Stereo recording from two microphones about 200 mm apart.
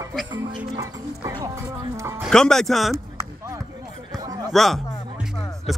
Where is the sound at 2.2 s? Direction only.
5° left (ahead or behind).